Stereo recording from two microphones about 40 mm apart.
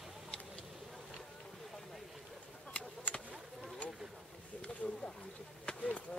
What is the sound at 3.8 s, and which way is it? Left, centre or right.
Boat, left.